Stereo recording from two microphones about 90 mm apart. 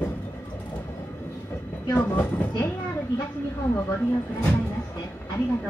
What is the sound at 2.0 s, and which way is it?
Speech, 20° left (ahead or behind).